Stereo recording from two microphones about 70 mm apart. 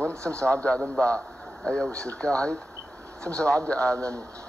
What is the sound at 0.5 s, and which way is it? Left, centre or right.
A man's voice, centre.